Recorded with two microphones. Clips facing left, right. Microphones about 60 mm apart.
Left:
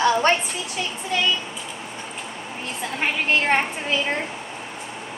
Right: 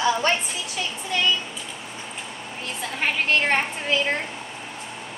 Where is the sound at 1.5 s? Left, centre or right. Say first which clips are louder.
Left 2 dB; centre.